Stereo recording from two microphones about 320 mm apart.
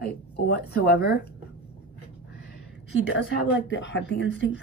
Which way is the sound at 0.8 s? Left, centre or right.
Left.